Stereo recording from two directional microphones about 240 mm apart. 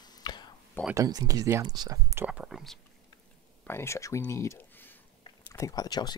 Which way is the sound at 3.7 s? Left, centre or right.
Centre.